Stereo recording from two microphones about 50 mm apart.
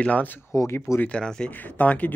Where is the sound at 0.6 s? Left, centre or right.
Left.